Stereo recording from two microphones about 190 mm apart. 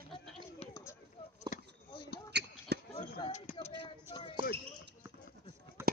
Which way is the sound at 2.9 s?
25° left (ahead or behind).